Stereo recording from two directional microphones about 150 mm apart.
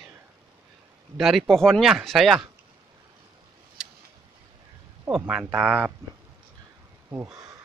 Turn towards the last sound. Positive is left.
turn(degrees=-10)  # may be behind; listen again after turning